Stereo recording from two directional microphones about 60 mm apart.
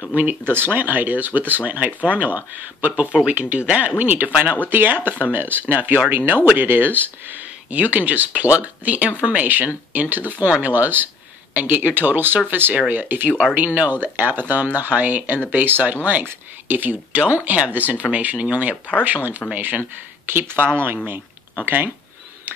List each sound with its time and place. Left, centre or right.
0.1 s speech: right
4.6 s speech: right